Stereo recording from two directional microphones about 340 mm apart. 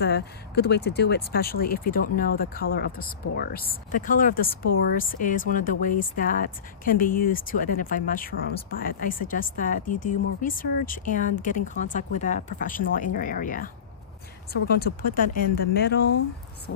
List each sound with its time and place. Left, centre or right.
0.0 s speech: left